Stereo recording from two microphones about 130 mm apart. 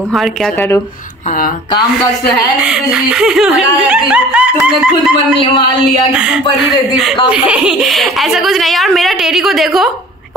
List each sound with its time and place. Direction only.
0.1 s a woman's voice: centre (ahead or behind)
2.6 s a woman's voice: 5° right (ahead or behind)
5.4 s speech: 40° left (ahead or behind)
6.1 s a sound: 5° right (ahead or behind)
7.2 s a woman's voice: 5° right (ahead or behind)